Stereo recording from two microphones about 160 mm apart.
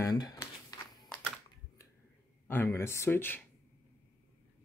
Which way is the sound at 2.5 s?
15° left (ahead or behind).